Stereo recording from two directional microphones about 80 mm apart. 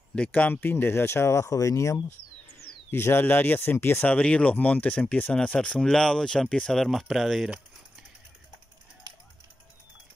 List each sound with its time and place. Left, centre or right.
0.1 s speech: centre; by 2.0 s left
2.9 s speech: left
4.0 s speech: centre